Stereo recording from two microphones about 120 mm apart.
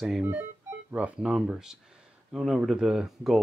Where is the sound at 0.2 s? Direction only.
15° right (ahead or behind).